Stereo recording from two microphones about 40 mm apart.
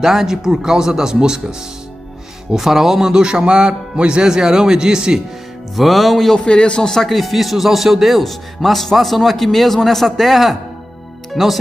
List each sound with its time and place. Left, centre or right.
0.0 s speech: centre
2.5 s speech: centre
3.1 s speech: centre
5.8 s speech: centre
6.3 s a man's voice: left
6.9 s speech: centre